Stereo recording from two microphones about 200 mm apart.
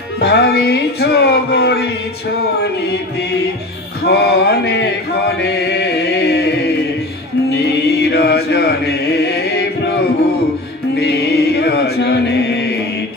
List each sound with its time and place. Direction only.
0.2 s music: 55° left (ahead or behind)
4.0 s chant: 55° left (ahead or behind)
7.6 s music: 55° left (ahead or behind)
11.0 s chant: 55° left (ahead or behind)